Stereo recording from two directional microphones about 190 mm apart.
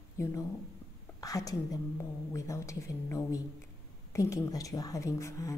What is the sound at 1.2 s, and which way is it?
A woman's voice, 20° left (ahead or behind).